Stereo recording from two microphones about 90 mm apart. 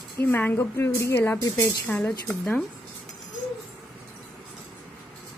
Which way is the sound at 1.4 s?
40° left (ahead or behind).